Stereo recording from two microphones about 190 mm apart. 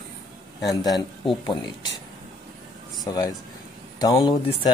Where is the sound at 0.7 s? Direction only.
20° left (ahead or behind).